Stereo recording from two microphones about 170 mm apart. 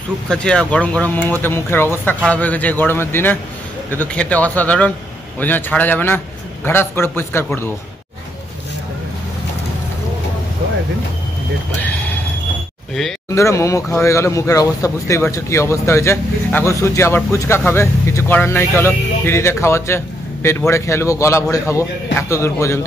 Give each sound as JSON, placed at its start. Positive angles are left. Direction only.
{"t": 0.3, "sound": "speech", "side_deg": 5}
{"t": 11.8, "sound": "a sound", "side_deg": 10}
{"t": 13.3, "sound": "speech", "side_deg": 15}